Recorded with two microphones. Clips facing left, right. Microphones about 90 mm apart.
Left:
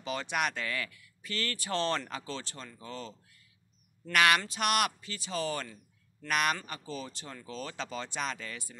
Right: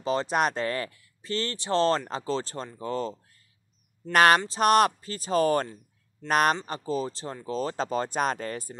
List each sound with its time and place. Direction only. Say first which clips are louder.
0.0 s speech: right 7 dB; 35° right (ahead or behind)